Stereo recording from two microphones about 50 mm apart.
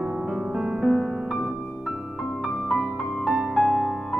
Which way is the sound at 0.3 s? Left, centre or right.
Centre.